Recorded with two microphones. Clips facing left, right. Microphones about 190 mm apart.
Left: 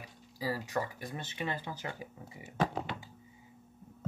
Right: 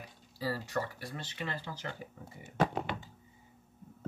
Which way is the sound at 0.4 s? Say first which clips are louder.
Even; 15° left (ahead or behind).